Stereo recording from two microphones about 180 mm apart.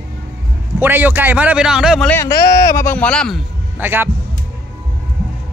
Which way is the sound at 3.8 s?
10° right (ahead or behind).